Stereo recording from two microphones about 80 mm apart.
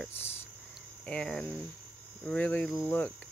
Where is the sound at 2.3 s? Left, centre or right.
Centre.